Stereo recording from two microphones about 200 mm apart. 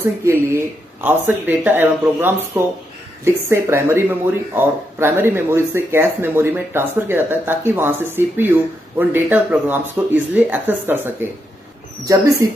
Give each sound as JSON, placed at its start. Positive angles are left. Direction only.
{"t": 0.2, "sound": "speech", "side_deg": -10}
{"t": 12.4, "sound": "speech", "side_deg": -15}